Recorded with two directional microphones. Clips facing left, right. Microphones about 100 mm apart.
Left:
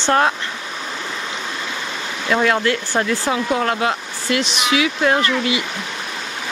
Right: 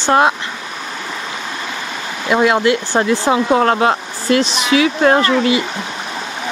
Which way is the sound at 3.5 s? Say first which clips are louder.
Right 7 dB; 45° right (ahead or behind).